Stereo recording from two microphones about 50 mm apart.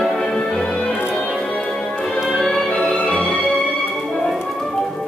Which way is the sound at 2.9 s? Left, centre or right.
Left.